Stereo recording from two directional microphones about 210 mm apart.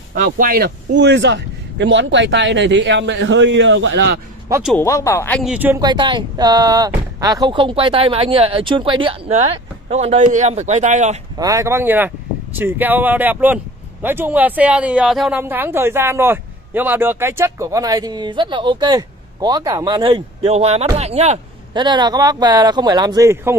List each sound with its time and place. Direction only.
0.1 s a man's voice: 40° right (ahead or behind)
4.7 s speech: 15° left (ahead or behind)
5.4 s speech: 5° right (ahead or behind)
5.9 s speech: 20° right (ahead or behind)
11.3 s speech: 15° right (ahead or behind); by 21.8 s 30° right (ahead or behind)
21.8 s speech: 20° right (ahead or behind)